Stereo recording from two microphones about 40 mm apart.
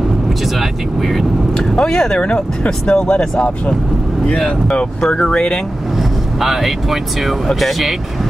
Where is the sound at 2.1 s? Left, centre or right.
Left.